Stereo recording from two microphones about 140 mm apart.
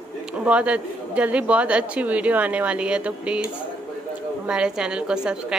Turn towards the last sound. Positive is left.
turn(degrees=-5)  # may be behind; listen again after turning